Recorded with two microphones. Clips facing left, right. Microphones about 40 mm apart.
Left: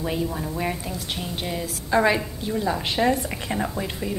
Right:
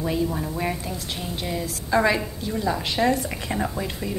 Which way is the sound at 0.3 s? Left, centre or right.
Centre.